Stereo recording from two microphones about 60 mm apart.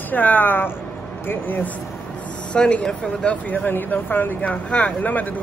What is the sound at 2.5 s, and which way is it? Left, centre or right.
Speech, centre.